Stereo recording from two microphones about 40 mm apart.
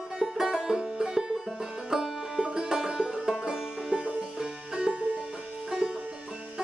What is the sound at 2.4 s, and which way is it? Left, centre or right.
Music, centre.